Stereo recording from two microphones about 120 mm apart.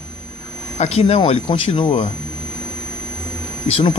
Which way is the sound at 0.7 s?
65° left (ahead or behind).